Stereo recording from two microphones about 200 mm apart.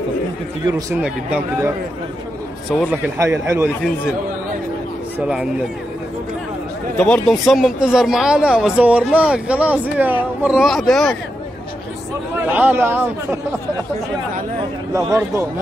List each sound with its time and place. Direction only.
1.0 s speech: 5° right (ahead or behind)
2.9 s speech: 15° right (ahead or behind)
7.0 s speech: 5° left (ahead or behind)
12.4 s speech: 10° right (ahead or behind)
14.9 s speech: 15° right (ahead or behind)